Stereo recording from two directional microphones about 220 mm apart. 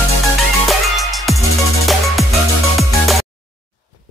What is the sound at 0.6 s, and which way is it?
Music, centre (ahead or behind).